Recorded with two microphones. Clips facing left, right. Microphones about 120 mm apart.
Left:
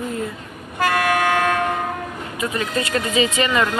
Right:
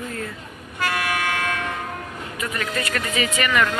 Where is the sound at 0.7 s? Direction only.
45° left (ahead or behind).